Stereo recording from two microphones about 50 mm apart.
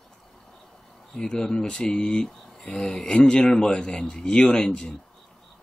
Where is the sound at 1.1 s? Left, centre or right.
Centre.